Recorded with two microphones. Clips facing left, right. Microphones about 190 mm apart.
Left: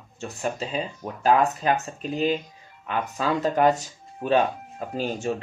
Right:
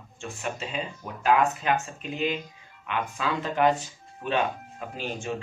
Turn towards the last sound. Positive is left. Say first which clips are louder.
# left 6 dB
turn(degrees=40)  # may be behind; listen again after turning